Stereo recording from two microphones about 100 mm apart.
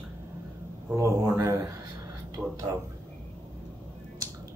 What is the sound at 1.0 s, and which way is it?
Speech, 30° right (ahead or behind).